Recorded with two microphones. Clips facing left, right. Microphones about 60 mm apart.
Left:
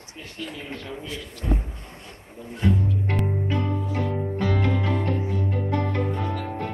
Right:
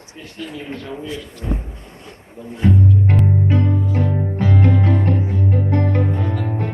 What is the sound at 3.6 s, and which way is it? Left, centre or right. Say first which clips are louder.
Music: right 6 dB; right.